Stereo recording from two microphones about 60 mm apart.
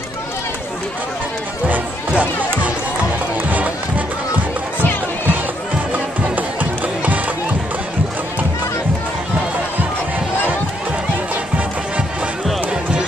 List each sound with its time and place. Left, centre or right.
1.7 s music: right
6.3 s music: right